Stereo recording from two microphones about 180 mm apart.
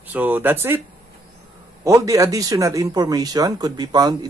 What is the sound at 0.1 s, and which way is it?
Speech, 10° right (ahead or behind).